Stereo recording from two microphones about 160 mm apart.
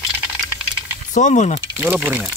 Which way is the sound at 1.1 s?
50° left (ahead or behind).